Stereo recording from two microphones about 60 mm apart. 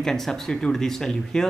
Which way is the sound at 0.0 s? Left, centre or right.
Centre.